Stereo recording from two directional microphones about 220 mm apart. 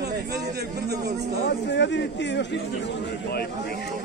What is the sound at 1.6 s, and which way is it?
Speech, 50° left (ahead or behind).